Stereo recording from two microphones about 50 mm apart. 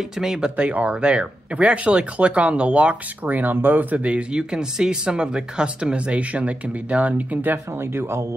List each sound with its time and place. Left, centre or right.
0.2 s speech: centre
0.6 s speech: right
3.3 s speech: right
4.0 s speech: right
7.5 s speech: right